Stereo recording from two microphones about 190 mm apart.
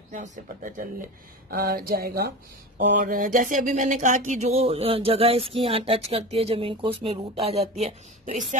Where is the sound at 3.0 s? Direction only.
45° right (ahead or behind).